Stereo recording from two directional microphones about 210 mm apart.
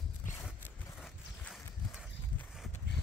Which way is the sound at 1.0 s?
Centre (ahead or behind).